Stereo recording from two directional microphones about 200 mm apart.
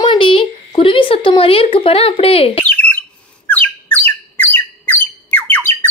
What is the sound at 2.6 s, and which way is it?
Bird, 10° left (ahead or behind).